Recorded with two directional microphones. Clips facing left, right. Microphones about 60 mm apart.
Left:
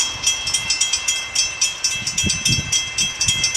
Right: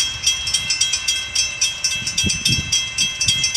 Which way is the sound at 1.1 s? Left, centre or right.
Centre.